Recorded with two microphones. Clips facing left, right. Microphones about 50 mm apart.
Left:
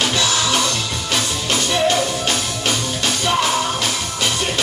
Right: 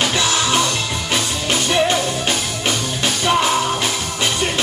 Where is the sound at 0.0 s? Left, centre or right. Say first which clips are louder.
Right 1 dB; right.